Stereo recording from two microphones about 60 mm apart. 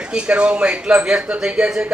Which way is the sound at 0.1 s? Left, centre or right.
Centre.